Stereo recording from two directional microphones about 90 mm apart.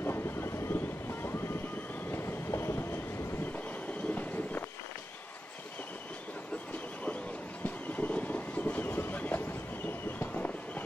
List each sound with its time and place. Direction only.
0.0 s vehicle: 25° left (ahead or behind)
2.0 s train: 25° left (ahead or behind)
3.5 s train: 15° left (ahead or behind)
7.6 s train: 15° left (ahead or behind)